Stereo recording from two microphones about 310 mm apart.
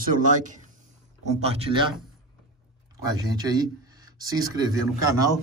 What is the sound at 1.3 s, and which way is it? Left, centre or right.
Speech, centre.